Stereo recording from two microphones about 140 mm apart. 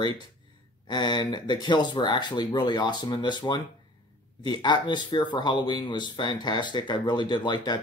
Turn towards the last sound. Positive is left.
turn(degrees=30)  # may be behind; listen again after turning